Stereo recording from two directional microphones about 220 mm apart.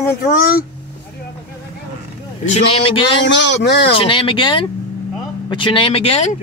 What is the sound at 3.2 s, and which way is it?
Speech, 55° left (ahead or behind).